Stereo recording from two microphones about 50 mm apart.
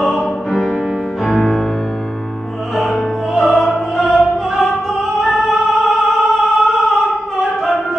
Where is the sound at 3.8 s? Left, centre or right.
Centre.